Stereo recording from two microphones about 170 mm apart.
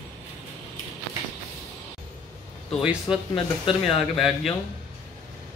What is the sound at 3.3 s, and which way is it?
Speech, 30° left (ahead or behind).